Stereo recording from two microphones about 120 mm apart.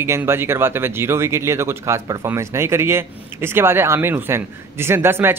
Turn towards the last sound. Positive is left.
turn(degrees=-20)  # may be behind; listen again after turning